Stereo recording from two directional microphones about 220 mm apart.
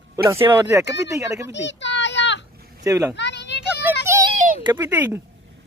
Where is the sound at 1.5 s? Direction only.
55° left (ahead or behind).